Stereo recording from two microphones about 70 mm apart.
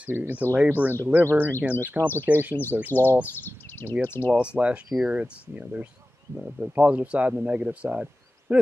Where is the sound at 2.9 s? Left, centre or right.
Left.